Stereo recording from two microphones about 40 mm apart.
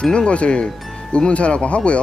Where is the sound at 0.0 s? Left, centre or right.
Centre.